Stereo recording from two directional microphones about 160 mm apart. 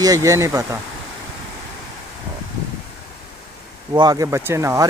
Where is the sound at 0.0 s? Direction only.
20° right (ahead or behind).